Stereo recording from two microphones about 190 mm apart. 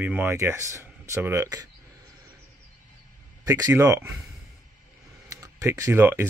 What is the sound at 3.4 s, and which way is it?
Speech, 20° right (ahead or behind).